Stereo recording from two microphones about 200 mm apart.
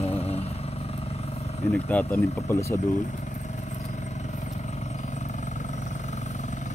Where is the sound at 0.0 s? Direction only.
30° left (ahead or behind).